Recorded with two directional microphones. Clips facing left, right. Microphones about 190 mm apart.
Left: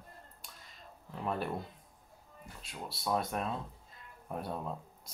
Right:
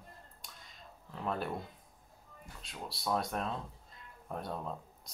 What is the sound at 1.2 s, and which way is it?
Speech, 5° left (ahead or behind).